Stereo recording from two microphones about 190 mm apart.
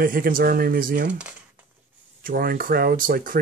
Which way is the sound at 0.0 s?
45° right (ahead or behind).